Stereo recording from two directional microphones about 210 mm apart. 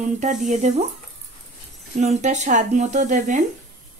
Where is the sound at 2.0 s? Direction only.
35° right (ahead or behind).